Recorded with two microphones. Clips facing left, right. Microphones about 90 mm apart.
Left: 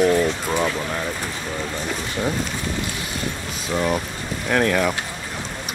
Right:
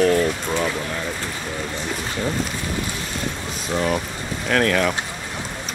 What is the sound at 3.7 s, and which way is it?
Speech, 5° left (ahead or behind).